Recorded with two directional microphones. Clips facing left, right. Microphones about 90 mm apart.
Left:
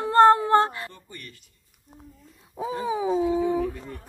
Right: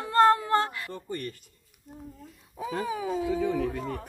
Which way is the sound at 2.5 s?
20° left (ahead or behind).